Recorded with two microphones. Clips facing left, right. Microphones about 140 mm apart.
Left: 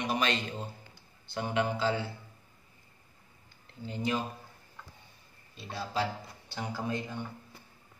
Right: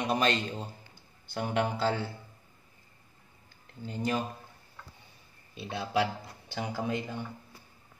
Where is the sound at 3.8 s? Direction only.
45° right (ahead or behind).